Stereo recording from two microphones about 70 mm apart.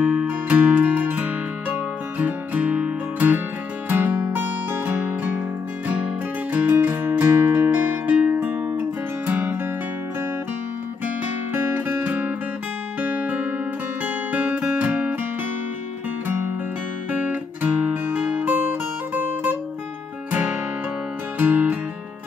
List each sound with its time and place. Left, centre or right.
0.0 s music: centre
6.5 s music: right
11.5 s music: right
17.1 s guitar: right
20.2 s music: right